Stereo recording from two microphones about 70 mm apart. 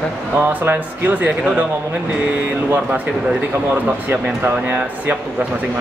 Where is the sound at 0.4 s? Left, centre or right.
Right.